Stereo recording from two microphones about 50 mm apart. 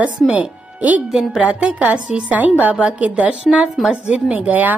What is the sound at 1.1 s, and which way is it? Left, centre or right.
Speech, centre.